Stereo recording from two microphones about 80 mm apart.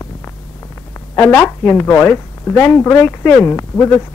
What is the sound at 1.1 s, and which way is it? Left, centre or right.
A woman's voice, left.